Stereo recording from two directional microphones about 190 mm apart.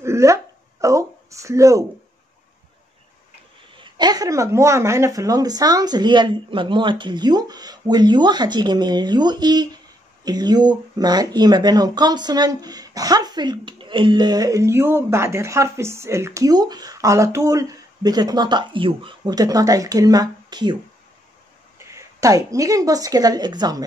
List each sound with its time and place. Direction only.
0.0 s a sound: 15° right (ahead or behind)
3.7 s speech: 25° right (ahead or behind)
21.7 s speech: 15° right (ahead or behind)